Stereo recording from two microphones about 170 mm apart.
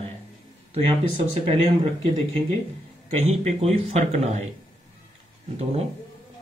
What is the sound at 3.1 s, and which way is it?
Speech, 40° right (ahead or behind).